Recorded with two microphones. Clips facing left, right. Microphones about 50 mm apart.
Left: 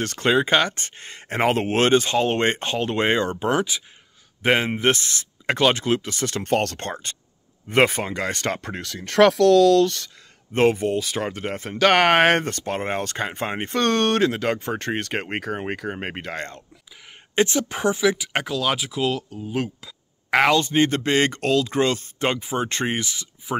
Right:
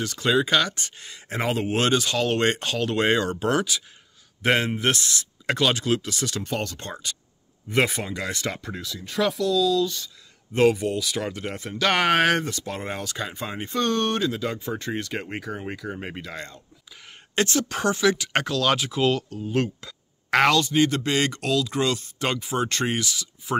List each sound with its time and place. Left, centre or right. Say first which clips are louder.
0.0 s speech: left 2 dB; left
10.5 s speech: left 1 dB; left
17.4 s speech: left 3 dB; centre
20.5 s speech: left 1 dB; left
22.3 s speech: left 1 dB; left